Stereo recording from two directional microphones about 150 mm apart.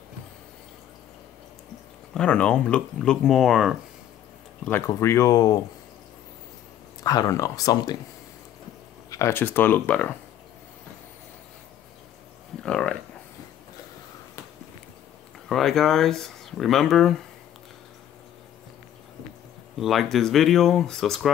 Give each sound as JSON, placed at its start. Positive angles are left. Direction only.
{"t": 2.1, "sound": "speech", "side_deg": 5}
{"t": 4.6, "sound": "speech", "side_deg": 15}
{"t": 7.0, "sound": "speech", "side_deg": 25}
{"t": 9.1, "sound": "speech", "side_deg": 15}
{"t": 12.6, "sound": "speech", "side_deg": 5}
{"t": 15.4, "sound": "speech", "side_deg": 0}
{"t": 19.8, "sound": "speech", "side_deg": 0}